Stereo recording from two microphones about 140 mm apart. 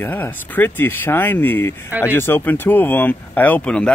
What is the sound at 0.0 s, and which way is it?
Speech, 15° left (ahead or behind).